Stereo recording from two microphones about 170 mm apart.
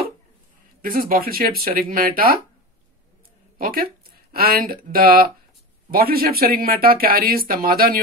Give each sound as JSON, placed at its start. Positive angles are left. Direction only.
{"t": 0.8, "sound": "speech", "side_deg": -55}
{"t": 3.5, "sound": "speech", "side_deg": -55}